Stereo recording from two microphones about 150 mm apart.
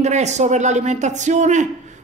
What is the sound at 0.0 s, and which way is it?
Speech, 50° right (ahead or behind).